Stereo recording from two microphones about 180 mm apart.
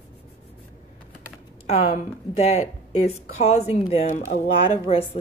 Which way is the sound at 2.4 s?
35° left (ahead or behind).